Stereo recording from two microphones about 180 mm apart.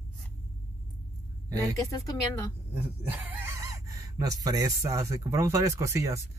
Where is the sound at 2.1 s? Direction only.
20° left (ahead or behind).